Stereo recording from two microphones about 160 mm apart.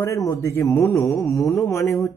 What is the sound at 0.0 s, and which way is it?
Speech, 20° left (ahead or behind).